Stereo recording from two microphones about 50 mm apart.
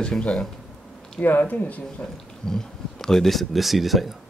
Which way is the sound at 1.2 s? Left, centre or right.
Left.